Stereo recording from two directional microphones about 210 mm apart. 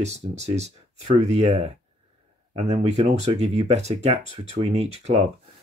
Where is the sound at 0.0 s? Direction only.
30° right (ahead or behind).